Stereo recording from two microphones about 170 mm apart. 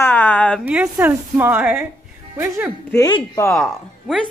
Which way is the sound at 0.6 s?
5° right (ahead or behind).